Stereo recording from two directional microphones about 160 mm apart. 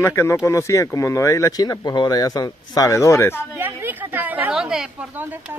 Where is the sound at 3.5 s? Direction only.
10° right (ahead or behind).